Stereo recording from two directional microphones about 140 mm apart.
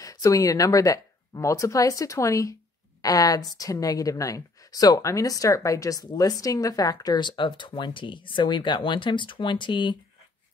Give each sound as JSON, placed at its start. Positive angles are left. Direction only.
{"t": 0.0, "sound": "a woman's voice", "side_deg": 25}